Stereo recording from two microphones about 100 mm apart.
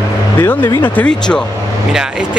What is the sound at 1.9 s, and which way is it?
Speech, 5° right (ahead or behind).